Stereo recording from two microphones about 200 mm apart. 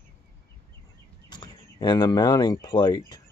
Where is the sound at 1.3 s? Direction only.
20° left (ahead or behind).